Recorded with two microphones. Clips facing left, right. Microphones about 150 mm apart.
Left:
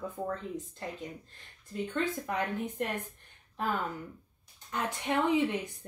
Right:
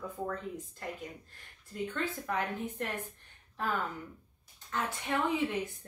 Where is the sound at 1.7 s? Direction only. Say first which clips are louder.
Left 3 dB; 20° left (ahead or behind).